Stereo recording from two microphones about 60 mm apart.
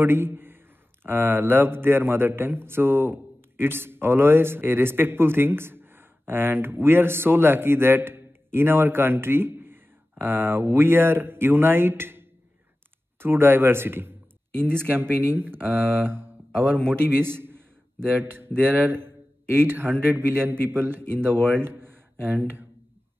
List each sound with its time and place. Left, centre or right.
0.0 s a man's voice: right